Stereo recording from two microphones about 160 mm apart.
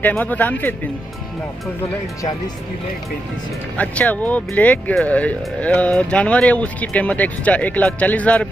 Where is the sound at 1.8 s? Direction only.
20° left (ahead or behind).